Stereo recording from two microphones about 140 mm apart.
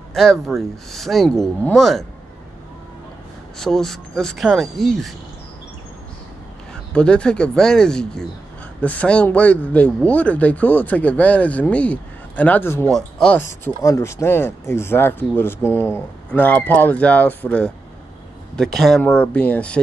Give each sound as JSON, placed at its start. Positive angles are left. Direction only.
{"t": 0.1, "sound": "speech", "side_deg": 0}
{"t": 3.5, "sound": "speech", "side_deg": 5}
{"t": 6.7, "sound": "speech", "side_deg": 5}
{"t": 13.4, "sound": "speech", "side_deg": 20}